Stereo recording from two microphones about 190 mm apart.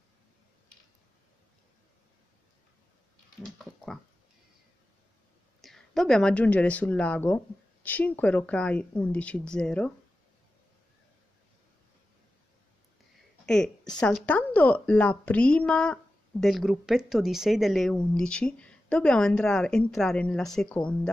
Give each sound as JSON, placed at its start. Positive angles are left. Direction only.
{"t": 3.4, "sound": "dog", "side_deg": 0}
{"t": 5.6, "sound": "speech", "side_deg": 0}
{"t": 13.5, "sound": "speech", "side_deg": 5}